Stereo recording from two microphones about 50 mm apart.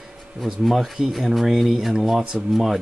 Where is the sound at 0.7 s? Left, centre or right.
Centre.